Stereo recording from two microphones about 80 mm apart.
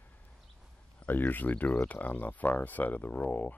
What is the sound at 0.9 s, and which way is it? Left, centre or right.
Speech, centre.